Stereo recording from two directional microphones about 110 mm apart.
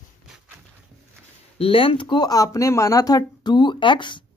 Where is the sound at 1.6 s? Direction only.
60° left (ahead or behind).